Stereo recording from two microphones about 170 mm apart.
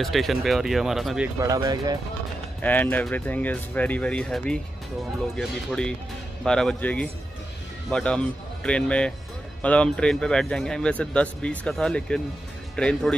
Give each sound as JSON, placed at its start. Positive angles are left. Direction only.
{"t": 0.0, "sound": "speech", "side_deg": 0}
{"t": 1.4, "sound": "speech", "side_deg": -20}
{"t": 2.6, "sound": "speech", "side_deg": 10}